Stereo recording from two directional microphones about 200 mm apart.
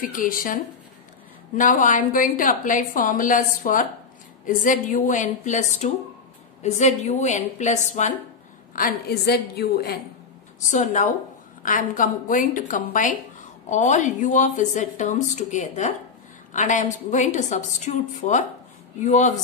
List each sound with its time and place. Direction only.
0.0 s a woman's voice: 45° left (ahead or behind)
1.6 s a woman's voice: 40° left (ahead or behind)
8.7 s a woman's voice: 50° left (ahead or behind)
10.7 s a woman's voice: 40° left (ahead or behind)